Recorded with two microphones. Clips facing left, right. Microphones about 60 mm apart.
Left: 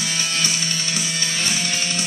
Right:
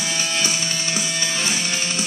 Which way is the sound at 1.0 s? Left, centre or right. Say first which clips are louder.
Right 1 dB; centre.